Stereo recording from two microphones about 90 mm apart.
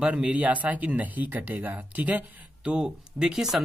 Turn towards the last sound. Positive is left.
turn(degrees=-5)  # may be behind; listen again after turning